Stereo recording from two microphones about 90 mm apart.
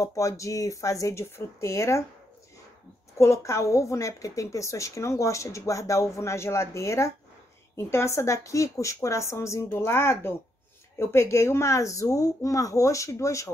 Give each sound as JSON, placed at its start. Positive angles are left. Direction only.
{"t": 0.0, "sound": "a woman's voice", "side_deg": 35}
{"t": 3.2, "sound": "a woman's voice", "side_deg": 30}